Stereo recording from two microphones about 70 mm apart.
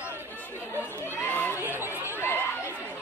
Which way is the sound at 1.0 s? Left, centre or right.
Left.